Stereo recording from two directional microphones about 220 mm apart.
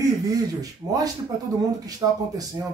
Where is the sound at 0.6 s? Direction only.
15° right (ahead or behind).